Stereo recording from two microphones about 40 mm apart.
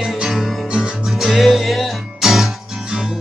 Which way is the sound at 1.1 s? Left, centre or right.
Centre.